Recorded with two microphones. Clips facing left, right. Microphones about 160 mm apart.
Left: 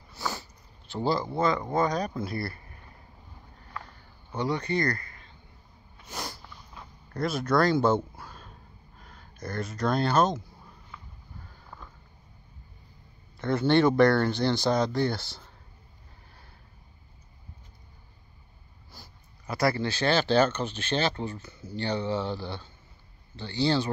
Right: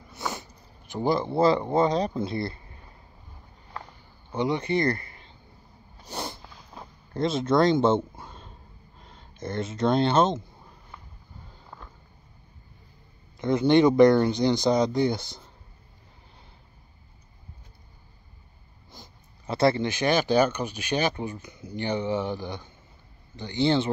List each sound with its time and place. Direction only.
0.1 s sniff: 20° right (ahead or behind)
1.3 s speech: 30° right (ahead or behind)
3.8 s a sound: 20° right (ahead or behind)
5.9 s snort: 30° right (ahead or behind)
7.2 s speech: 25° right (ahead or behind)
13.4 s speech: 15° right (ahead or behind)
18.9 s speech: 25° right (ahead or behind)